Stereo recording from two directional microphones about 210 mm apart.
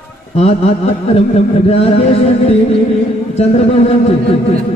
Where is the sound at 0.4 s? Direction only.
30° left (ahead or behind).